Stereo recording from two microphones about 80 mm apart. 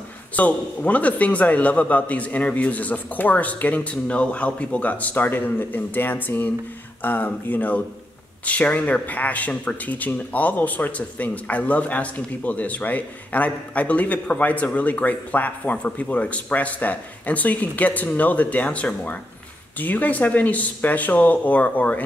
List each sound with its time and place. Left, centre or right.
0.4 s speech: centre